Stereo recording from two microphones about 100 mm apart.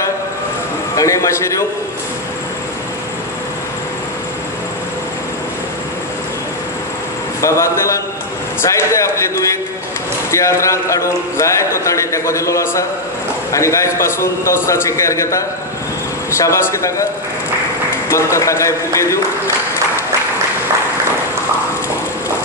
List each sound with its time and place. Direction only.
0.9 s speech: 30° left (ahead or behind)
7.4 s speech: 30° left (ahead or behind)
18.1 s speech: 30° left (ahead or behind)